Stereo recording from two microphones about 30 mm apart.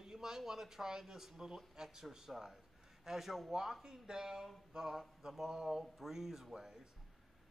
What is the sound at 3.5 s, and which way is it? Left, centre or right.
Speech, centre.